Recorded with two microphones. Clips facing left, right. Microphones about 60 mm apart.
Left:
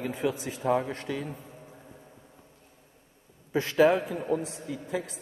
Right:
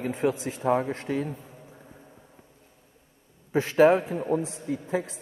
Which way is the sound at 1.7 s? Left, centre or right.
Centre.